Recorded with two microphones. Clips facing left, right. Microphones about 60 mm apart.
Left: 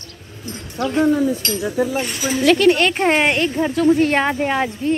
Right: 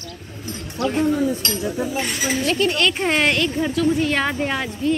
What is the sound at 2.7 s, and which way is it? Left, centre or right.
Speech, left.